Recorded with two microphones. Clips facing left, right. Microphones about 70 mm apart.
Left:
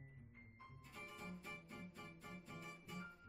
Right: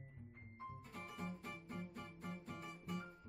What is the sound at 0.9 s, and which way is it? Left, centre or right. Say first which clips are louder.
Music: right 4 dB; right.